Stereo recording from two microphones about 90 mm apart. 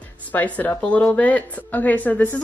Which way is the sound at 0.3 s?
20° left (ahead or behind).